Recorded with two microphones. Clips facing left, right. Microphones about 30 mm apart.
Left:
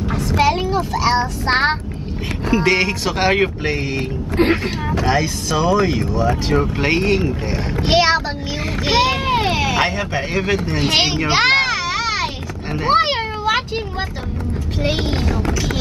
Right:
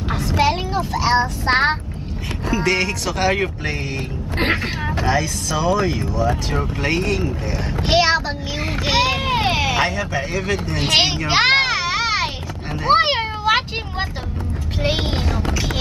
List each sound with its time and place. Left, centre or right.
0.4 s speech: centre
2.5 s speech: left
5.0 s speech: left
7.8 s a sound: centre
8.8 s vehicle: centre
9.9 s speech: left
10.8 s speech: centre
11.2 s children playing: centre
12.9 s meow: centre
14.8 s speech: centre